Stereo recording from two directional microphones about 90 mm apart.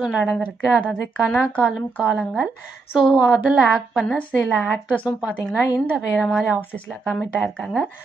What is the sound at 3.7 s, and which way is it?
A woman's voice, 5° left (ahead or behind).